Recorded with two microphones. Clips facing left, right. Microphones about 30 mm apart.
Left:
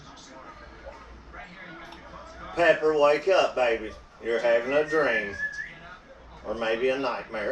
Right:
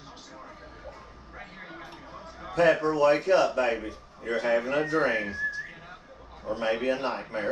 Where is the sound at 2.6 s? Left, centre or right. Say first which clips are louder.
Left 1 dB; centre.